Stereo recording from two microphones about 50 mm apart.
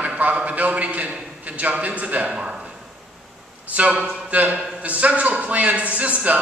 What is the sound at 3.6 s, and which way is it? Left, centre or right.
A man's voice, right.